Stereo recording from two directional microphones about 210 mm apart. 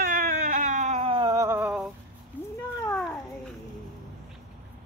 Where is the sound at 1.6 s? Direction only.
5° right (ahead or behind).